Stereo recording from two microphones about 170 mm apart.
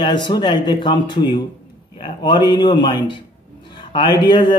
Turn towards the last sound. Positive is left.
turn(degrees=25)  # may be behind; listen again after turning